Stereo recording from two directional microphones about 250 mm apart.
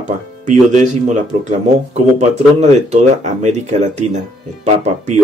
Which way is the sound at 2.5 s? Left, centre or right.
Right.